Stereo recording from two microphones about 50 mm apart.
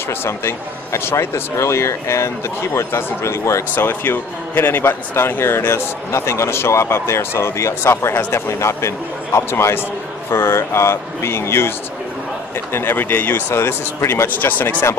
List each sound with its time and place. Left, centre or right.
0.1 s speech: left
3.7 s a man's voice: left
6.1 s a man's voice: left
12.7 s a man's voice: left
13.5 s speech: left
14.2 s speech: left